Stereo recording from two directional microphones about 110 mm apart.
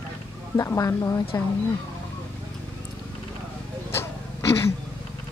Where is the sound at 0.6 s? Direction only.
30° left (ahead or behind).